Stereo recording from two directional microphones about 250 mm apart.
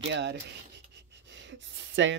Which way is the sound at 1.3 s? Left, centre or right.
Right.